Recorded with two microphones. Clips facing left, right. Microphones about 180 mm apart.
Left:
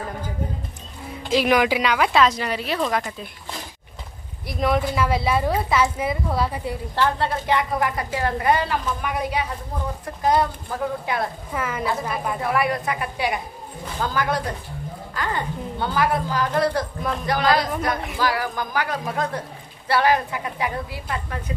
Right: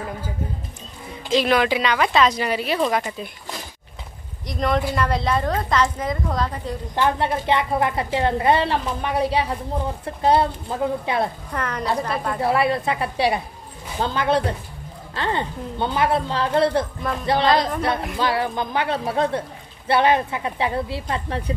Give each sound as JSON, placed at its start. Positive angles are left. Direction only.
{"t": 1.3, "sound": "speech", "side_deg": 10}
{"t": 4.5, "sound": "a woman's voice", "side_deg": 5}
{"t": 7.0, "sound": "a woman's voice", "side_deg": -20}
{"t": 11.5, "sound": "a woman's voice", "side_deg": 5}
{"t": 12.4, "sound": "a woman's voice", "side_deg": -30}